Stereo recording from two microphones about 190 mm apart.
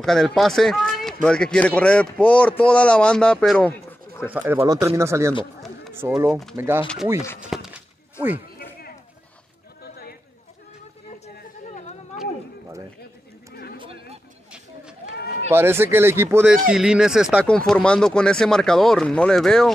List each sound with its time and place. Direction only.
0.0 s speech: centre (ahead or behind)
4.3 s speech: 10° right (ahead or behind)
15.5 s speech: 10° right (ahead or behind); by 19.7 s 5° left (ahead or behind)